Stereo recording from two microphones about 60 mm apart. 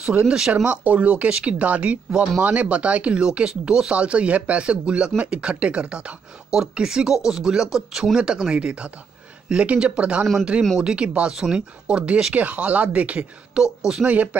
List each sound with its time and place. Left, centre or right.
0.2 s speech: centre
13.6 s speech: centre
14.0 s speech: right